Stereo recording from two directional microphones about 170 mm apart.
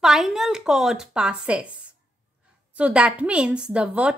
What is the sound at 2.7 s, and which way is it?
A woman's voice, 5° right (ahead or behind).